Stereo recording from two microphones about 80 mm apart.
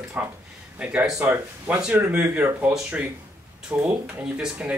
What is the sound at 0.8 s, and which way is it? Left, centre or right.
Speech, centre.